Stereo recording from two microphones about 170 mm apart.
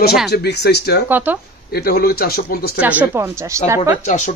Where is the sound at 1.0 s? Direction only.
10° right (ahead or behind).